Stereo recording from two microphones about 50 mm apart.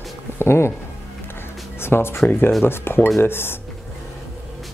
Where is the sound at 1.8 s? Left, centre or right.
Left.